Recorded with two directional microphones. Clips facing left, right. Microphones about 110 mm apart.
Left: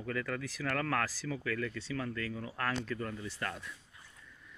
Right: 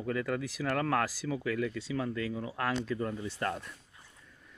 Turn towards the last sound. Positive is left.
turn(degrees=-40)  # may be behind; listen again after turning